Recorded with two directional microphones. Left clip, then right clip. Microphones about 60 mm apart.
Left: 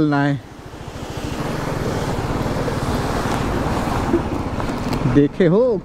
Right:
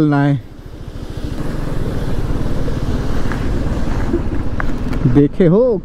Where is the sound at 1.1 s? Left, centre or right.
Left.